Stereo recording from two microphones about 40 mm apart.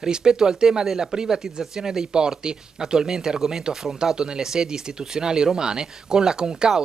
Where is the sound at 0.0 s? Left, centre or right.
Centre.